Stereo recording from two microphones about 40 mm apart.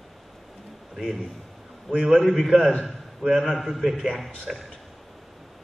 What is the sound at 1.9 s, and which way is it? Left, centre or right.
Speech, centre.